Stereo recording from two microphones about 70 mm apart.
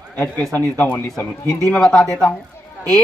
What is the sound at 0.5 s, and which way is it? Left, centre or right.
Speech, left.